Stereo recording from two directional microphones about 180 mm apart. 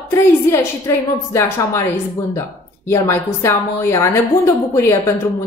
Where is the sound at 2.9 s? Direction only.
15° left (ahead or behind).